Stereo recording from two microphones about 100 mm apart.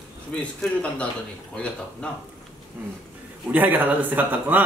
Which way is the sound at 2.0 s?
10° left (ahead or behind).